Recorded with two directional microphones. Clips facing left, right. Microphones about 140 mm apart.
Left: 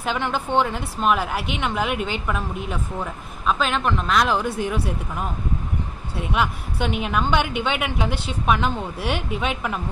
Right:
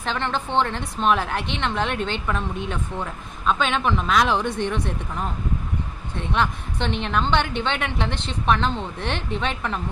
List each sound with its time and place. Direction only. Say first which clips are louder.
0.0 s a woman's voice: left 1 dB; 10° left (ahead or behind)